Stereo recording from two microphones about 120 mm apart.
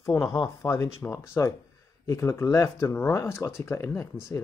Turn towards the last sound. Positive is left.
turn(degrees=25)  # may be behind; listen again after turning